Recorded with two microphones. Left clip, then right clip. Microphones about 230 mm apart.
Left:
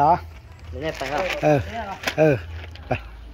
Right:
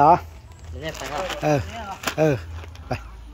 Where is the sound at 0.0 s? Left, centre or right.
Right.